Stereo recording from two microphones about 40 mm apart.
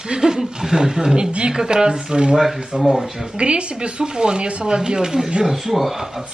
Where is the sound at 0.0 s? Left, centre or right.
Centre.